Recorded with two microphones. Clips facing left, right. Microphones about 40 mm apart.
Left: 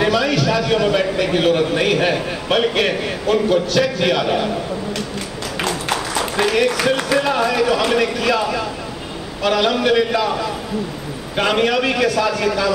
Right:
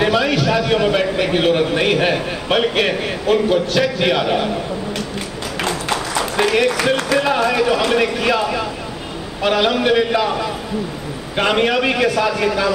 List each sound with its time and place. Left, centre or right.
0.1 s a man's voice: centre
5.6 s a sound: centre
6.5 s a man's voice: centre
6.8 s a man's voice: centre